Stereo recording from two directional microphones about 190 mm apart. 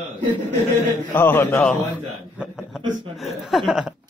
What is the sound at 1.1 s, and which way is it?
Speech, 10° left (ahead or behind).